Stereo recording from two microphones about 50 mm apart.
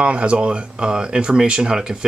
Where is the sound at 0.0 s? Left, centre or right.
Right.